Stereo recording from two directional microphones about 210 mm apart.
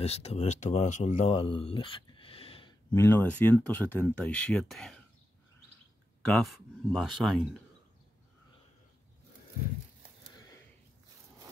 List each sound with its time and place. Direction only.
0.0 s speech: 30° left (ahead or behind)
2.9 s speech: 10° left (ahead or behind)
6.2 s speech: centre (ahead or behind)